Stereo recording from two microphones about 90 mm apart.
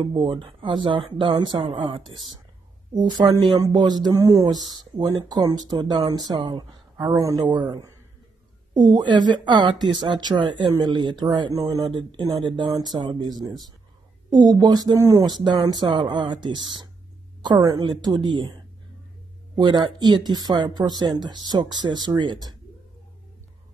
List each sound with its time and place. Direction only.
0.0 s speech: 60° right (ahead or behind)
2.9 s speech: 50° right (ahead or behind)
4.1 s speech: 35° right (ahead or behind); by 6.6 s 60° right (ahead or behind)
7.0 s speech: 40° right (ahead or behind)
7.4 s a woman's voice: 55° right (ahead or behind)
19.6 s speech: 55° right (ahead or behind)